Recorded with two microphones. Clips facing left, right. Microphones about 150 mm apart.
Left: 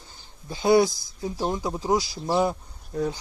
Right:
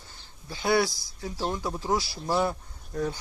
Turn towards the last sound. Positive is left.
turn(degrees=10)  # may be behind; listen again after turning